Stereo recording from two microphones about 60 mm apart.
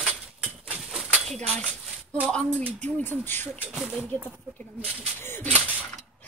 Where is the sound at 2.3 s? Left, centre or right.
Centre.